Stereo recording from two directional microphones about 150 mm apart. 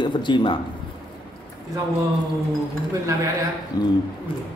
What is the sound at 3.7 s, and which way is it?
Speech, 25° left (ahead or behind).